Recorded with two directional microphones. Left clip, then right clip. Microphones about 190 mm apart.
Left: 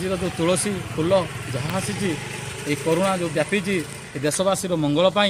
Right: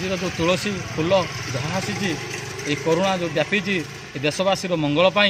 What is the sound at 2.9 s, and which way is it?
Speech, 10° left (ahead or behind).